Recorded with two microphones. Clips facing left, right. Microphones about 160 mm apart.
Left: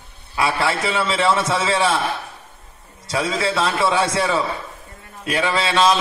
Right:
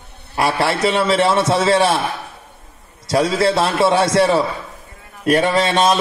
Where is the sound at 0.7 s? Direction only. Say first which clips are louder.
Right 5 dB; 80° right.